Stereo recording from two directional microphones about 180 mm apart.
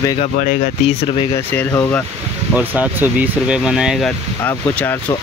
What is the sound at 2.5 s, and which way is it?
Speech, 10° right (ahead or behind).